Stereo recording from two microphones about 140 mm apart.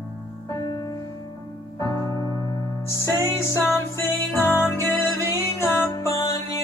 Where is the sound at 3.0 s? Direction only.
15° left (ahead or behind).